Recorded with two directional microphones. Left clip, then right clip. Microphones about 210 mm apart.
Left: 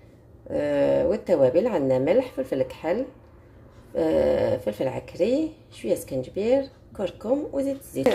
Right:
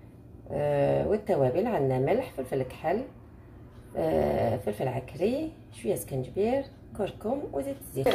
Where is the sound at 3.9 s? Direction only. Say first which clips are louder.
Left 5 dB; 40° left (ahead or behind).